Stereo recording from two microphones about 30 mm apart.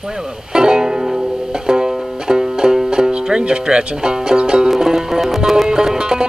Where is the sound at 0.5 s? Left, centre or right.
Right.